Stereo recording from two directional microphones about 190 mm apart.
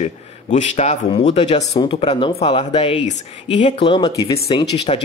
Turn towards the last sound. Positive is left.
turn(degrees=35)  # may be behind; listen again after turning